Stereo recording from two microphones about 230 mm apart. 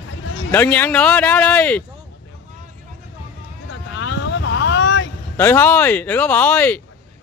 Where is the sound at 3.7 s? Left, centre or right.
Left.